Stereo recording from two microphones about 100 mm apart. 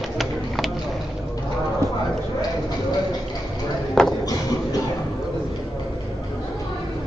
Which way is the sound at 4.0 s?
5° left (ahead or behind).